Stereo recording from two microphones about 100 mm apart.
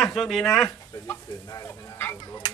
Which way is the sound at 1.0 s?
20° left (ahead or behind).